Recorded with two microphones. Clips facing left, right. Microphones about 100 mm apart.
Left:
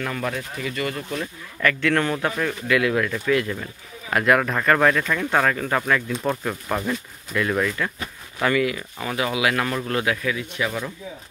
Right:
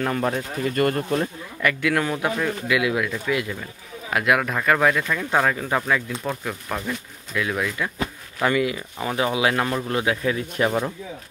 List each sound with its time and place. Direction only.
0.0 s speech: 30° right (ahead or behind)
0.7 s speech: 50° right (ahead or behind)
1.6 s speech: 10° right (ahead or behind)
8.4 s speech: 20° right (ahead or behind)
10.3 s speech: 40° right (ahead or behind)